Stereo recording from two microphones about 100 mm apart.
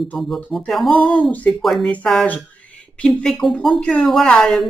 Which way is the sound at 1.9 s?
15° left (ahead or behind).